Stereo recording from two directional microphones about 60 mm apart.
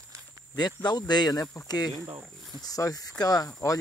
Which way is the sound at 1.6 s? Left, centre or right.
Left.